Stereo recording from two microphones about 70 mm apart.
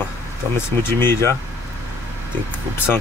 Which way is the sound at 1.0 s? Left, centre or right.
Left.